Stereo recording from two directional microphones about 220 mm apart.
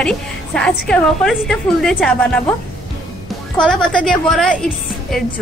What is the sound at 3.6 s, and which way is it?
Speech, 5° left (ahead or behind).